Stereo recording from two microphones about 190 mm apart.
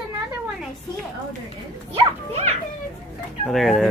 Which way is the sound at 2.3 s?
35° right (ahead or behind).